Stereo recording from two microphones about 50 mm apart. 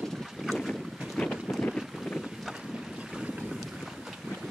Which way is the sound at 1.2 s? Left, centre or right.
Centre.